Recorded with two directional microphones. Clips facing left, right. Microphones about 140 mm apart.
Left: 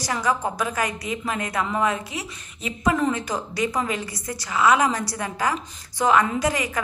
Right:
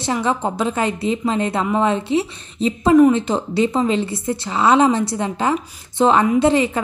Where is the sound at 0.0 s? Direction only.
25° right (ahead or behind).